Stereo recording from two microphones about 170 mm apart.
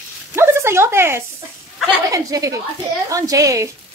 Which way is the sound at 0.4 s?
15° right (ahead or behind).